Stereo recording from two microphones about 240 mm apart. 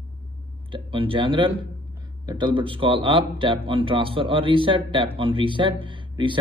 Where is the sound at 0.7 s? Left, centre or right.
Right.